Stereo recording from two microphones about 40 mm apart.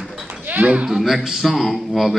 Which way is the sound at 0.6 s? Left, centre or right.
Right.